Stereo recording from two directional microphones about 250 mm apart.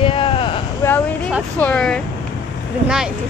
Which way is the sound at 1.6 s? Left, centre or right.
Centre.